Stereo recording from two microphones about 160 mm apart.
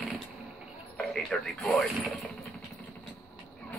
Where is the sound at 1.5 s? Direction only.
5° left (ahead or behind).